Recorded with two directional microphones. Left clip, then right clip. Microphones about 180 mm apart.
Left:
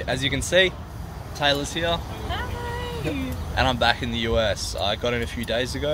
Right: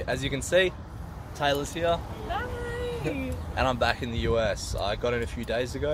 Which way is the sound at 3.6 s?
Centre (ahead or behind).